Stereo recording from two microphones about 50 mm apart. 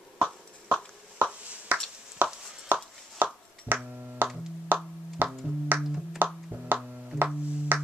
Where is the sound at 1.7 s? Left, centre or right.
Right.